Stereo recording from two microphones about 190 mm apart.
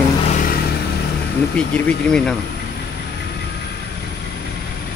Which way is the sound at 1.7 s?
5° left (ahead or behind).